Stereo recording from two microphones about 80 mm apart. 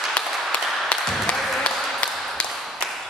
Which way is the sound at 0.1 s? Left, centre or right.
Centre.